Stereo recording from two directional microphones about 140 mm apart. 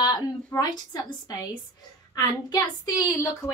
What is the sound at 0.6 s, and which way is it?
A woman's voice, 25° left (ahead or behind).